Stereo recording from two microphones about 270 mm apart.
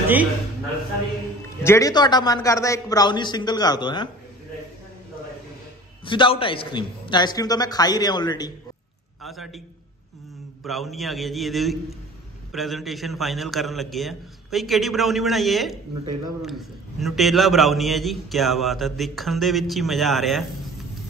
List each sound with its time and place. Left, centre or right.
1.6 s a man's voice: centre
6.0 s a man's voice: centre
9.2 s a man's voice: centre
10.6 s a man's voice: centre